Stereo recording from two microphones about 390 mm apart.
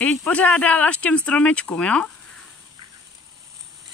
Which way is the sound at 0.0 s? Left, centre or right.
Centre.